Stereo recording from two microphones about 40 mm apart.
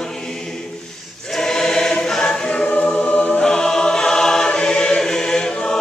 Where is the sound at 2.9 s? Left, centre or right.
Left.